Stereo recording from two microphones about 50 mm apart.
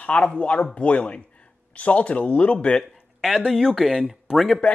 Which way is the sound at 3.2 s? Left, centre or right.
Centre.